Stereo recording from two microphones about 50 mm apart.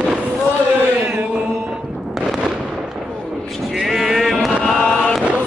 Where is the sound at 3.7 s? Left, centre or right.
Centre.